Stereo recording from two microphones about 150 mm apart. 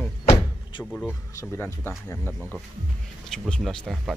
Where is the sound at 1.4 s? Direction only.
15° left (ahead or behind).